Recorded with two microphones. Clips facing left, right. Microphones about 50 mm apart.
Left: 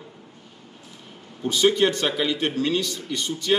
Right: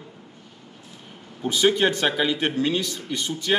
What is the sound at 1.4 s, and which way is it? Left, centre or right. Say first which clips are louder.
A man's voice: even; centre.